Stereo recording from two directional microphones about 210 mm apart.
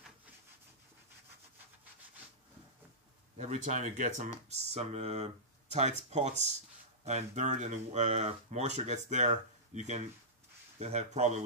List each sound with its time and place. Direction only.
3.3 s speech: 35° right (ahead or behind)